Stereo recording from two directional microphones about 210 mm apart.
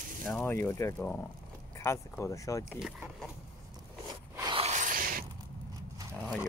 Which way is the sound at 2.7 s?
5° right (ahead or behind).